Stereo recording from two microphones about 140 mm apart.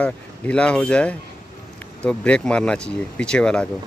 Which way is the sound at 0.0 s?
10° left (ahead or behind).